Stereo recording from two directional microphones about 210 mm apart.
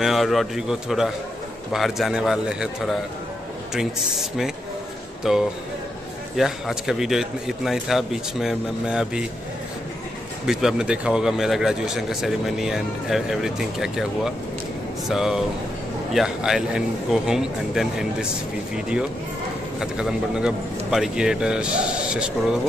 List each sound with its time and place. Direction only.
0.0 s speech: centre (ahead or behind)
10.4 s speech: centre (ahead or behind)
19.8 s speech: 5° right (ahead or behind)